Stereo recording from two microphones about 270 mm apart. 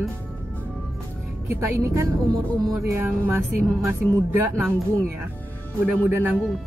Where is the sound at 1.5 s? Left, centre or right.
Centre.